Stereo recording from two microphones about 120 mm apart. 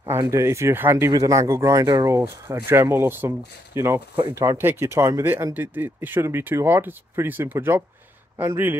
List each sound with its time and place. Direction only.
0.3 s speech: 25° right (ahead or behind)